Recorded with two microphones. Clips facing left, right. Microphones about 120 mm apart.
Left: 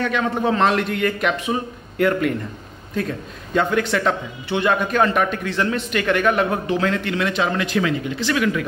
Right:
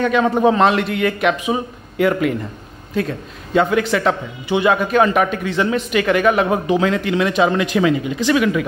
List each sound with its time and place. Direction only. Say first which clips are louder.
0.1 s a man's voice: right 6 dB; 20° right (ahead or behind)
0.7 s a man's voice: right 3 dB; 5° right (ahead or behind)
3.5 s a man's voice: right 3 dB; 10° right (ahead or behind)